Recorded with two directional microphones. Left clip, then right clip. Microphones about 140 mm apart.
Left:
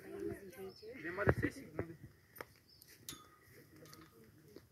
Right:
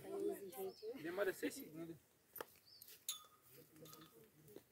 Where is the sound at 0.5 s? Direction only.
65° right (ahead or behind); by 1.6 s 80° right.